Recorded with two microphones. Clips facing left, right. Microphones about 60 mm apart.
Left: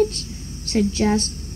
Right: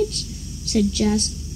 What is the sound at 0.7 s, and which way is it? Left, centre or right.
Speech, left.